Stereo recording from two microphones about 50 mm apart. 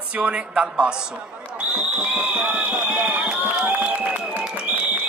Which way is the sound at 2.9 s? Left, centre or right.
Right.